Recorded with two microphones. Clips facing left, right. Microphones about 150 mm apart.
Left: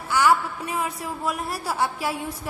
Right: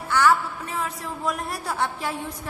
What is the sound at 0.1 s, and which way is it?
A woman's voice, 10° left (ahead or behind).